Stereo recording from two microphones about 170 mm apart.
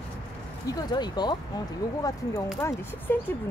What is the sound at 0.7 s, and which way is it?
Speech, 25° left (ahead or behind).